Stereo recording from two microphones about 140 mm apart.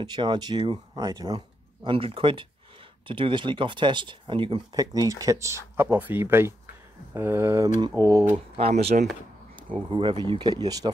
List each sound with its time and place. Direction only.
0.0 s speech: 30° right (ahead or behind)
1.9 s speech: 40° right (ahead or behind); by 8.3 s 25° right (ahead or behind)
8.3 s speech: 45° right (ahead or behind); by 10.9 s 25° right (ahead or behind)